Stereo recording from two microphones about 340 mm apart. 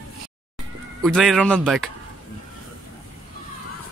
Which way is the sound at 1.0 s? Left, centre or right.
Centre.